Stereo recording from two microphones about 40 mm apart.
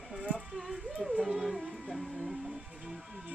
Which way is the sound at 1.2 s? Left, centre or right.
Centre.